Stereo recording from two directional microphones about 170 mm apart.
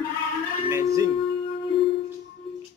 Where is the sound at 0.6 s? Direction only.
15° right (ahead or behind).